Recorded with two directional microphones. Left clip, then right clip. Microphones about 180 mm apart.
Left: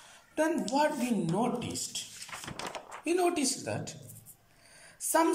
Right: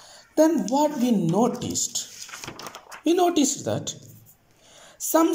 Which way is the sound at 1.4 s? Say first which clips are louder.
Right 8 dB; 25° right (ahead or behind).